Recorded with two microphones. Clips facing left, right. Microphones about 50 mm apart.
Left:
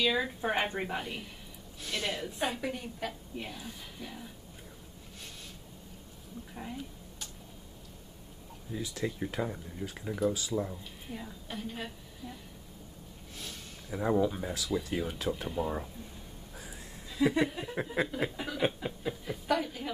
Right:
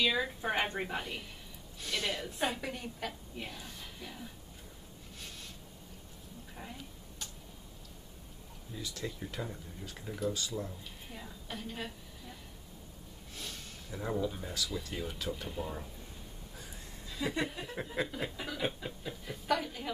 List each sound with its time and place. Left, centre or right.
0.0 s a woman's voice: centre
6.5 s a sound: centre
8.7 s speech: centre
11.1 s a woman's voice: centre
13.8 s speech: centre
16.5 s a sound: centre
17.8 s a woman's voice: centre